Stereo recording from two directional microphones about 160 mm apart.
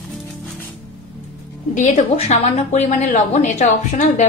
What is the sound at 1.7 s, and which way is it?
A woman's voice, 50° left (ahead or behind).